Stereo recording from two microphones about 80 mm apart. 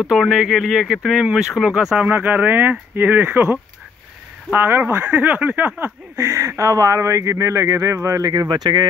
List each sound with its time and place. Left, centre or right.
0.1 s speech: centre
2.0 s speech: right
6.1 s speech: right
8.3 s speech: right